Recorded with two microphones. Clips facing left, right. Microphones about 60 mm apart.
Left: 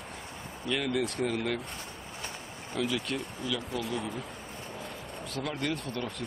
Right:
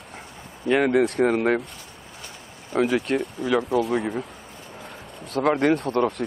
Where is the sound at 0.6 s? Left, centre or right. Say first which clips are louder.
Right 11 dB; right.